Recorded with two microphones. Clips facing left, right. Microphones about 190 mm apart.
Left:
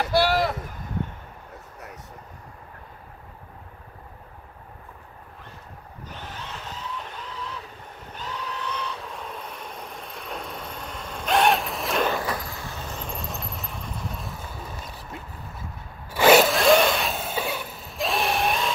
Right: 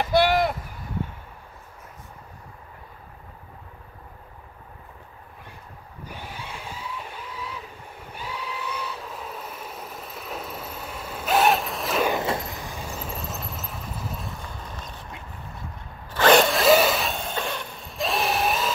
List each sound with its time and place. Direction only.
0.1 s a sound: 20° right (ahead or behind)
6.0 s vehicle: 10° right (ahead or behind)
8.1 s train: 10° right (ahead or behind)
12.1 s vehicle: 25° right (ahead or behind); by 14.6 s 5° left (ahead or behind)
16.1 s zipper: 10° left (ahead or behind)